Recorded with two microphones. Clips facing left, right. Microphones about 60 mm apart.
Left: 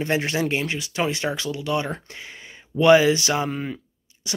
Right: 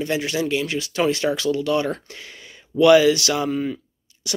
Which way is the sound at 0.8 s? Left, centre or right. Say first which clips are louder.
Right 4 dB; centre.